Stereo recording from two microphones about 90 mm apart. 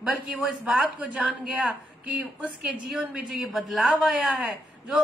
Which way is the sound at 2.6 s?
Centre (ahead or behind).